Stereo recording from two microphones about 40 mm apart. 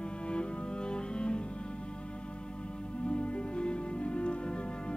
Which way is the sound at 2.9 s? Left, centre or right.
Left.